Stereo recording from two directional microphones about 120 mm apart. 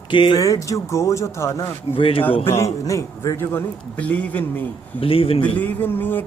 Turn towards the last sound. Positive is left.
turn(degrees=15)  # may be behind; listen again after turning